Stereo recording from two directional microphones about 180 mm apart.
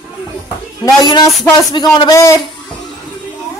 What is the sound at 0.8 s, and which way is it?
Speech, 25° left (ahead or behind).